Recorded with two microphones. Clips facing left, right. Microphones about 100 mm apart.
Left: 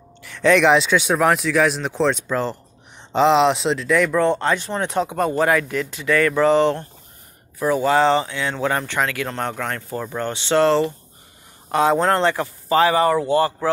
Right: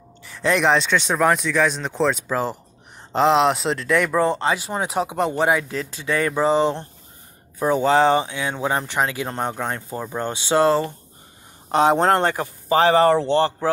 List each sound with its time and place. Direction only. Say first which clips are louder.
0.3 s speech: left 4 dB; centre (ahead or behind); by 5.8 s 20° right (ahead or behind)
5.8 s speech: left 4 dB; 30° right (ahead or behind)
7.5 s speech: even; 25° right (ahead or behind)
11.7 s speech: right 1 dB; 25° right (ahead or behind)
12.1 s a man's voice: even; 45° right (ahead or behind)
12.4 s speech: left 1 dB; 25° right (ahead or behind)